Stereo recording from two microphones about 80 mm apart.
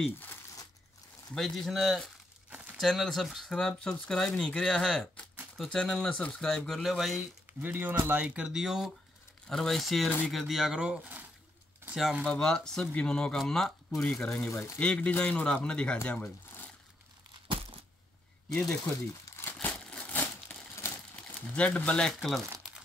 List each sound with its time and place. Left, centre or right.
1.3 s speech: centre
7.6 s speech: right
8.5 s speech: centre
12.3 s speech: centre
14.5 s speech: left
14.8 s speech: centre
16.1 s a sound: centre
18.5 s speech: centre
19.6 s crumpling: centre
21.4 s speech: centre